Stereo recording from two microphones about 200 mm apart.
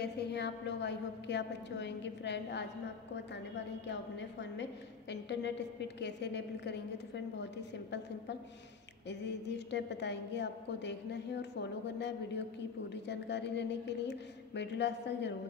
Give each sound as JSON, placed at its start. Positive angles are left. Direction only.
{"t": 0.0, "sound": "a woman's voice", "side_deg": 55}
{"t": 3.8, "sound": "a woman's voice", "side_deg": 60}